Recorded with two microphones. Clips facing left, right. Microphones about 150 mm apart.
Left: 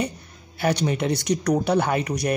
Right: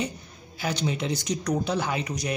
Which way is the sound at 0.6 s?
60° left (ahead or behind).